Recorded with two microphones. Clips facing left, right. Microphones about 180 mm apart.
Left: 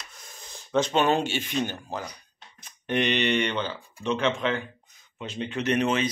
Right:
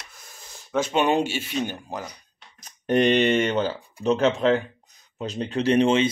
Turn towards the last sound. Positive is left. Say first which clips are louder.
# right 5 dB
turn(degrees=-25)  # may be behind; listen again after turning